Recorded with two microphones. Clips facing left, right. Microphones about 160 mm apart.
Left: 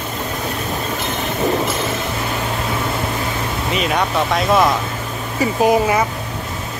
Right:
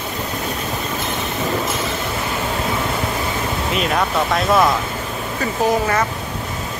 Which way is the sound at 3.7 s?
Centre (ahead or behind).